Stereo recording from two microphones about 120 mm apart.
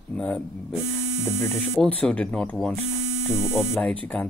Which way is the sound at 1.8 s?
10° left (ahead or behind).